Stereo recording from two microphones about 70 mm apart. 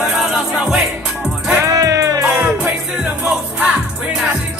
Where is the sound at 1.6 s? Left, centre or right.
Right.